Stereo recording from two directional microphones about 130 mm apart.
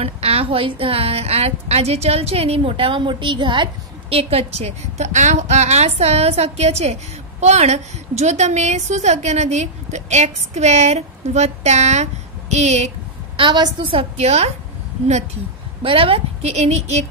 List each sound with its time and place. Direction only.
0.0 s a woman's voice: 50° right (ahead or behind)
13.4 s a woman's voice: 40° right (ahead or behind); by 14.5 s 55° right (ahead or behind)
15.8 s a woman's voice: 45° right (ahead or behind)